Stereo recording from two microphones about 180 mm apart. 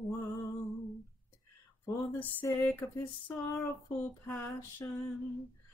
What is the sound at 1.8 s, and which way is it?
Music, 10° left (ahead or behind).